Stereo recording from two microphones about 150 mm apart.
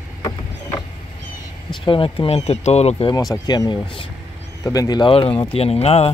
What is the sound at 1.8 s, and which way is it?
Speech, 35° left (ahead or behind).